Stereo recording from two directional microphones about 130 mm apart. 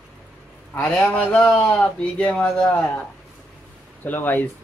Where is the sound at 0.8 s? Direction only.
10° left (ahead or behind).